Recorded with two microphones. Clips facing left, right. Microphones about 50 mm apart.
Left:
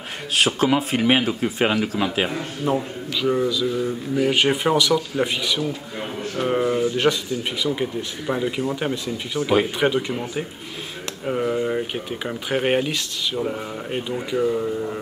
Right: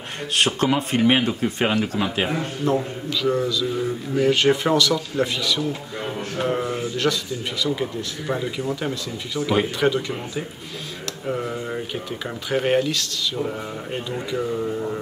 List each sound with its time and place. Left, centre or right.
0.3 s speech: centre
2.6 s speech: centre
3.7 s speech: centre
4.2 s speech: centre
11.9 s speech: left
13.4 s speech: centre